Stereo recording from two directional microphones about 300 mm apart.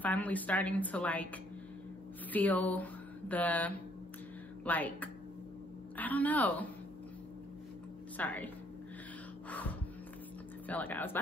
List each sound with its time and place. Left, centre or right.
0.0 s a woman's voice: centre
2.3 s a sound: centre
4.6 s a woman's voice: centre
8.2 s a woman's voice: centre
9.5 s a sound: centre
10.7 s a woman's voice: centre